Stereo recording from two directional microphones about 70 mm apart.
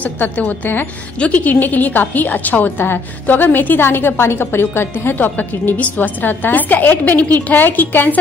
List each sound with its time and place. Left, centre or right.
0.0 s a woman's voice: left